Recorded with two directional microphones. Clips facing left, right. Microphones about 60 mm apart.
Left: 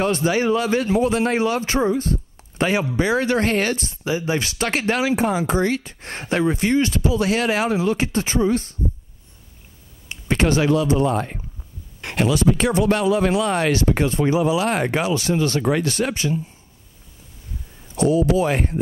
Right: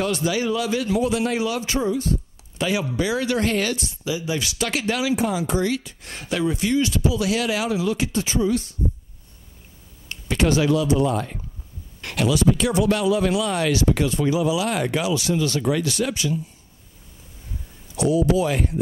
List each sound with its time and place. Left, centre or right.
0.0 s speech: left
10.2 s speech: left
17.9 s speech: left